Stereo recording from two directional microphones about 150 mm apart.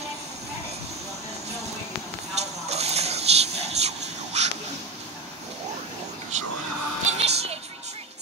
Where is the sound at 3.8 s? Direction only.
45° right (ahead or behind).